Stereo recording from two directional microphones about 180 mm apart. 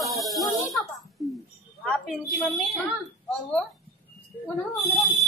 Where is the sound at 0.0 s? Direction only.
Centre (ahead or behind).